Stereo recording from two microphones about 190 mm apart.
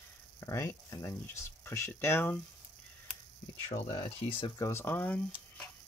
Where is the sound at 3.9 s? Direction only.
25° left (ahead or behind); by 5.3 s 10° left (ahead or behind).